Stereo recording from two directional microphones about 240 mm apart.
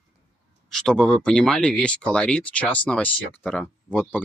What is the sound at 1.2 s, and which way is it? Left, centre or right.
Speech, centre.